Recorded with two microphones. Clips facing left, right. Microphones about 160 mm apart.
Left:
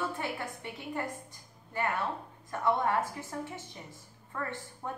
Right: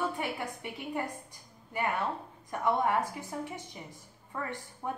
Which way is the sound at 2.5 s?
15° right (ahead or behind).